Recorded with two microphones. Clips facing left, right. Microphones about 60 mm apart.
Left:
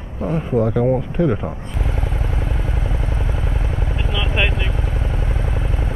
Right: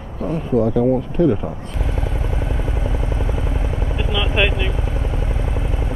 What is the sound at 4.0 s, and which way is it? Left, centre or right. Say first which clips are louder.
Vehicle: right 3 dB; centre.